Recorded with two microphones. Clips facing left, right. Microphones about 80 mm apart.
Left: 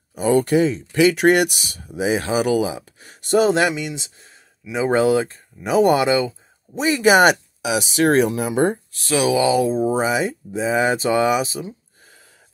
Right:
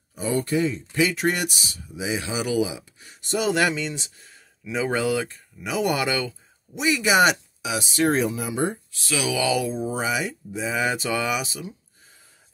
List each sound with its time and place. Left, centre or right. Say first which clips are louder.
0.1 s speech: left 7 dB; left
3.4 s speech: left 4 dB; left
4.7 s speech: left 7 dB; left
6.7 s speech: left 6 dB; left
7.6 s speech: left 5 dB; left